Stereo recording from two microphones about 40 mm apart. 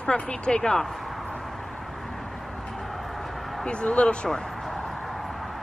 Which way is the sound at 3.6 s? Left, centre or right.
Left.